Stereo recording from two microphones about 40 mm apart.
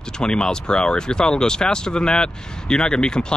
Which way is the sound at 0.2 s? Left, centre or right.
Left.